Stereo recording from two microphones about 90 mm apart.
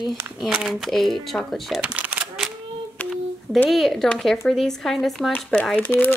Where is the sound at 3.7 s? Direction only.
Centre (ahead or behind).